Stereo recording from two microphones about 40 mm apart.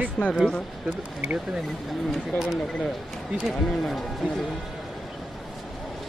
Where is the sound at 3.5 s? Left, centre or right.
Centre.